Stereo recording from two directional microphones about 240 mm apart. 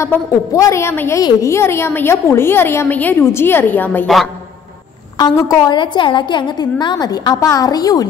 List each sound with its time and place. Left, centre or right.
0.0 s a woman's voice: centre
5.1 s a woman's voice: centre